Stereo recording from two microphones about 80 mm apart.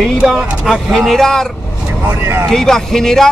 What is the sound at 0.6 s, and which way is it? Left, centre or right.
Speech, centre.